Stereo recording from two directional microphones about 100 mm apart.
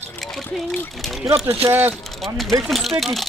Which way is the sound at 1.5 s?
20° right (ahead or behind).